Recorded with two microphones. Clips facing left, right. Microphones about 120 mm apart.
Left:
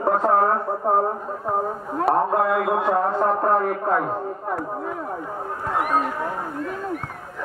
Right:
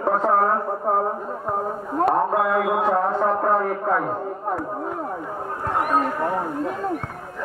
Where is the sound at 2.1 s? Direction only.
Centre (ahead or behind).